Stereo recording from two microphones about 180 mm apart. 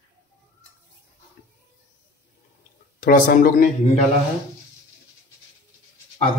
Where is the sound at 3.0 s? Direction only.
50° left (ahead or behind).